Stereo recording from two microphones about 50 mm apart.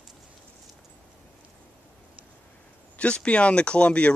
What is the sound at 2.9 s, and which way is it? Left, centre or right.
Speech, left.